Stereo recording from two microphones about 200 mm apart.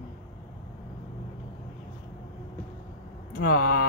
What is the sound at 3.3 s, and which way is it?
Speech, 45° left (ahead or behind).